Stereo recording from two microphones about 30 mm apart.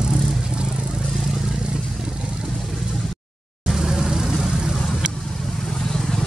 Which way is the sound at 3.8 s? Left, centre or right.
Right.